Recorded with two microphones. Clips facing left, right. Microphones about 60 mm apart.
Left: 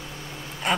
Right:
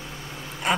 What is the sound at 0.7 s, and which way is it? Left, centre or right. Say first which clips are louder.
Duck: right 1 dB; centre.